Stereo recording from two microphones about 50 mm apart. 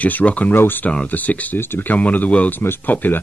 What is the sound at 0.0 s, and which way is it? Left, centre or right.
Speech, left.